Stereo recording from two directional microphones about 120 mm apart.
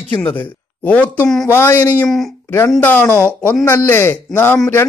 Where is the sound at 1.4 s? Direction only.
20° left (ahead or behind).